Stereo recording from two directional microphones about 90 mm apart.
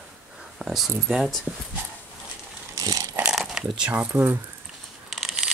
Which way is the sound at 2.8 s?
40° right (ahead or behind).